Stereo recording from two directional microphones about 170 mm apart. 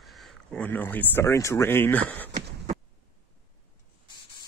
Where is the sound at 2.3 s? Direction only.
45° right (ahead or behind).